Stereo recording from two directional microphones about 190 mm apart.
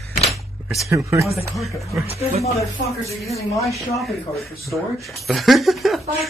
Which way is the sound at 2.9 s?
Centre (ahead or behind).